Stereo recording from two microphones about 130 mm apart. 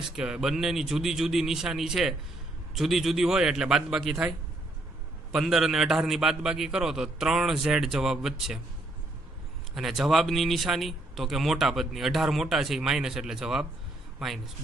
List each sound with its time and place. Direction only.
0.1 s speech: 5° right (ahead or behind)
5.3 s speech: 5° right (ahead or behind)
9.8 s speech: centre (ahead or behind)